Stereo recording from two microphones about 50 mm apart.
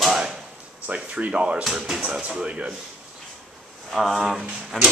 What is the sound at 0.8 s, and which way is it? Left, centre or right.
Speech, right.